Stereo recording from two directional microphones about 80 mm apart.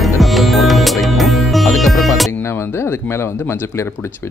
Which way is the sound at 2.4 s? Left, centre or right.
Left.